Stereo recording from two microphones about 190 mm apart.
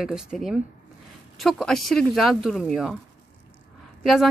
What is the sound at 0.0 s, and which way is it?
Speech, 5° right (ahead or behind).